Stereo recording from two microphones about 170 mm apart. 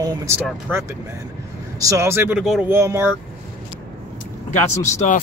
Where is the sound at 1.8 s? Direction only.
15° right (ahead or behind).